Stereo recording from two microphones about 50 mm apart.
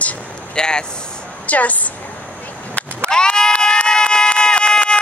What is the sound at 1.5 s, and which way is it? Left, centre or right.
Speech, left.